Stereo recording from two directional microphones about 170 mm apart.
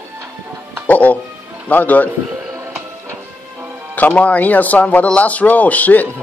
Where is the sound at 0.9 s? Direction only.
10° left (ahead or behind).